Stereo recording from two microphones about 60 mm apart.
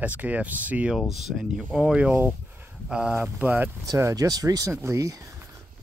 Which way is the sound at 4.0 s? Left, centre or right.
Right.